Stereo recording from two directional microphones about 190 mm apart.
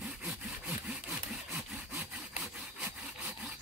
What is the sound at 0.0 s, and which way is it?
Sawing, 5° right (ahead or behind).